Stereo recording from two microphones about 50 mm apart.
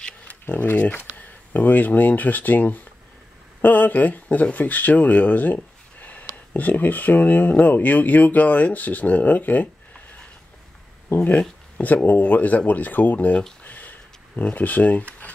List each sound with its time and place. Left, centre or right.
0.3 s speech: left
11.2 s speech: left
13.7 s a sound: left